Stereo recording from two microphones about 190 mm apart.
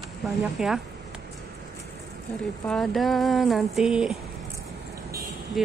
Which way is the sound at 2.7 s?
Centre (ahead or behind).